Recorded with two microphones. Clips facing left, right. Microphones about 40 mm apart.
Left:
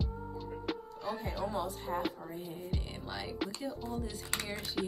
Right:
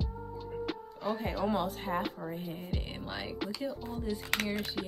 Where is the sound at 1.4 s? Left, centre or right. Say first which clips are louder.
Right 4 dB; right.